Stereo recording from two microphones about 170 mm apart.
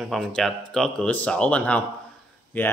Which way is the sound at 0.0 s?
5° left (ahead or behind).